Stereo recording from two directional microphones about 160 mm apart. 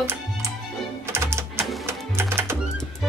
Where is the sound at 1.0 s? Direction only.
15° right (ahead or behind).